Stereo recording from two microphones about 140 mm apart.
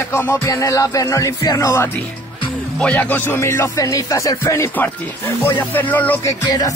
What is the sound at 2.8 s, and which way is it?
Music, 10° left (ahead or behind).